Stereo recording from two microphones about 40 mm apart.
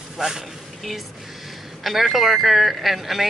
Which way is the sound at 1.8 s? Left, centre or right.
Centre.